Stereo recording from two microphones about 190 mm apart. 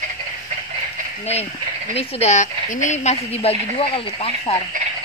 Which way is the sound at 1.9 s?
35° left (ahead or behind).